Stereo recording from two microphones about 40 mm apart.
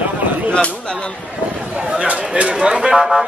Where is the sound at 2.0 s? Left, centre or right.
Right.